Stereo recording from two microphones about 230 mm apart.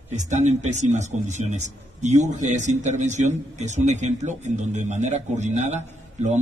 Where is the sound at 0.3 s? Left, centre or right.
Right.